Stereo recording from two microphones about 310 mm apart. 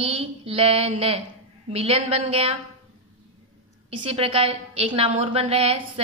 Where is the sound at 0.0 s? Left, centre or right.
Centre.